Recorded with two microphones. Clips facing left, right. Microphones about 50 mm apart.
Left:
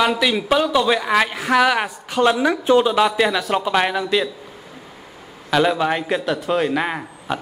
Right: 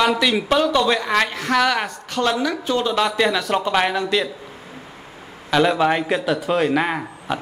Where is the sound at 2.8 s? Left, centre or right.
Centre.